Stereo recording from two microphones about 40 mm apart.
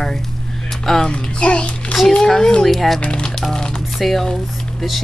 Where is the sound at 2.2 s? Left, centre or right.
Centre.